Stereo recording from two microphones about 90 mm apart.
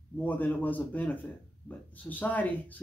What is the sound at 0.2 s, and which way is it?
Speech, 20° left (ahead or behind).